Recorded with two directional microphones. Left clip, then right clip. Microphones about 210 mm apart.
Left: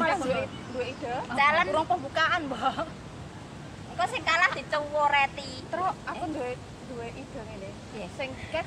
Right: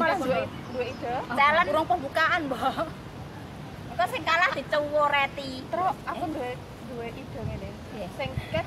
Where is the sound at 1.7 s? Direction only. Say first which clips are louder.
Right 2 dB; 20° right (ahead or behind).